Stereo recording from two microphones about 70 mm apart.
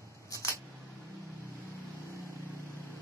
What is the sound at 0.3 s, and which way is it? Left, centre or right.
Camera, left.